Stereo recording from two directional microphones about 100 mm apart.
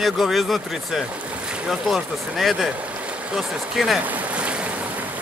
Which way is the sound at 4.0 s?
15° right (ahead or behind).